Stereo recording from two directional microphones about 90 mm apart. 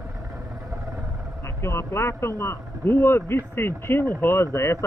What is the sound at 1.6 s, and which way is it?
Speech, 30° left (ahead or behind).